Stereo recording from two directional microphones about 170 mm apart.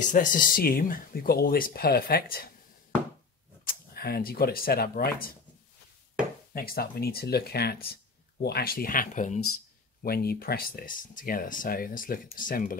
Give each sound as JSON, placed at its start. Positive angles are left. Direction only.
{"t": 0.0, "sound": "speech", "side_deg": 50}
{"t": 3.6, "sound": "speech", "side_deg": 65}
{"t": 6.5, "sound": "speech", "side_deg": 60}
{"t": 10.0, "sound": "speech", "side_deg": 65}